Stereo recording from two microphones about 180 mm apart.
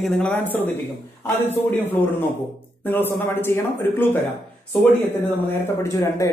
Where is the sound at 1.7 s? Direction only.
10° left (ahead or behind).